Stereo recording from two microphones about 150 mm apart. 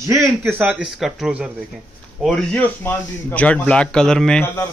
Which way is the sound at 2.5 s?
15° left (ahead or behind).